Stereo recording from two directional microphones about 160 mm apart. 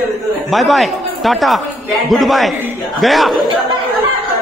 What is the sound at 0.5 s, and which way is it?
A man's voice, centre (ahead or behind).